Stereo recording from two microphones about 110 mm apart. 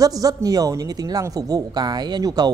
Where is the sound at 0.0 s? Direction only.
35° right (ahead or behind).